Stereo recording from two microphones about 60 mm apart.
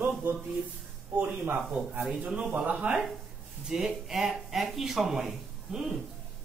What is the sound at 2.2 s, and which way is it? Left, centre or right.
Speech, right.